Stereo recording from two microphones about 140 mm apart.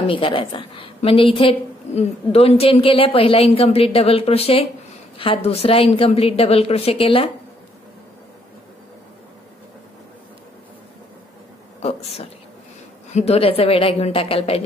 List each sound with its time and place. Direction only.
0.0 s a woman's voice: 40° left (ahead or behind)
11.8 s a woman's voice: 45° left (ahead or behind)